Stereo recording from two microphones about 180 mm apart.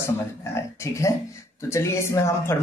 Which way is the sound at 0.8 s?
15° left (ahead or behind).